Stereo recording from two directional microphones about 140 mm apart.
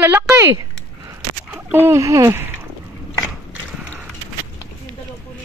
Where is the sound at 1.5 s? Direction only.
10° right (ahead or behind).